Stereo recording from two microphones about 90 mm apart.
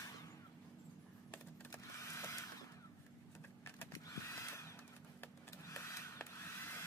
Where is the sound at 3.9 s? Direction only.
35° left (ahead or behind).